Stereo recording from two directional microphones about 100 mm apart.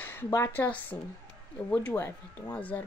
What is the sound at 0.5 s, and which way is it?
Speech, 15° left (ahead or behind).